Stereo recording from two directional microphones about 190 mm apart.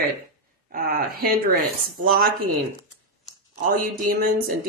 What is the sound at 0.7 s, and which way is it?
A woman's voice, 50° right (ahead or behind).